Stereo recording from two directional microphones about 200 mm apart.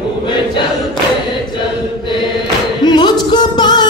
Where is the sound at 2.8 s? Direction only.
20° left (ahead or behind).